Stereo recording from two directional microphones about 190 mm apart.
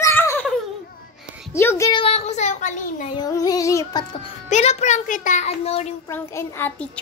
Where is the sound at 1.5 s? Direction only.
15° left (ahead or behind).